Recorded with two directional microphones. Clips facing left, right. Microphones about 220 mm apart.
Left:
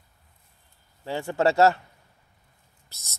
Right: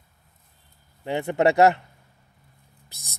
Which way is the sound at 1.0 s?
20° right (ahead or behind).